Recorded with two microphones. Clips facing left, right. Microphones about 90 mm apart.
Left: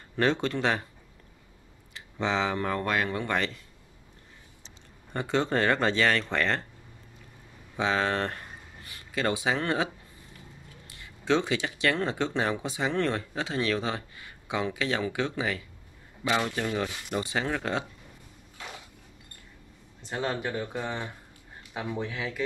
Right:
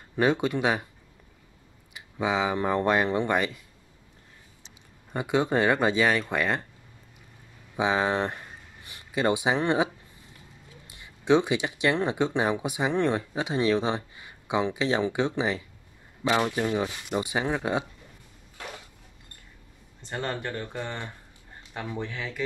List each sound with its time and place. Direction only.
0.1 s speech: 10° right (ahead or behind)
2.0 s speech: 10° right (ahead or behind)
3.3 s speech: 10° right (ahead or behind)
5.1 s speech: 10° right (ahead or behind)
7.7 s speech: 15° right (ahead or behind)
10.9 s speech: 20° right (ahead or behind)
20.0 s speech: centre (ahead or behind)